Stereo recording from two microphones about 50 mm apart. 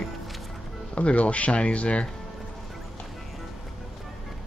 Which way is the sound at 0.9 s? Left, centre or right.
Left.